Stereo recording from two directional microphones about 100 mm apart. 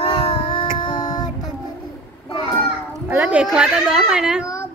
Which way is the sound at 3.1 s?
15° right (ahead or behind).